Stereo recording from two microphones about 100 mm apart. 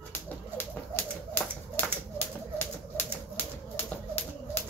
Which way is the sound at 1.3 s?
20° left (ahead or behind).